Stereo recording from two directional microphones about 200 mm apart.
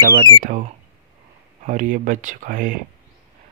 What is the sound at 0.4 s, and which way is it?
Speech, 40° right (ahead or behind).